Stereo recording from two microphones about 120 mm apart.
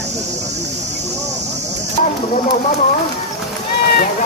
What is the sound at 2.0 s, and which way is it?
Speech, 70° left (ahead or behind).